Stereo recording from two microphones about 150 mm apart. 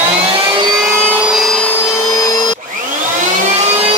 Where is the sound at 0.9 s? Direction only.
10° right (ahead or behind); by 2.6 s 25° left (ahead or behind).